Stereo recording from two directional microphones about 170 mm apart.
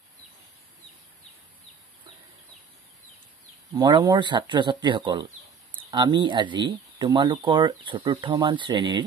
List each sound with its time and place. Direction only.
3.7 s speech: 25° right (ahead or behind)